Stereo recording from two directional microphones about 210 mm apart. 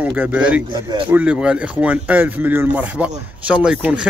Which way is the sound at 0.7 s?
20° right (ahead or behind).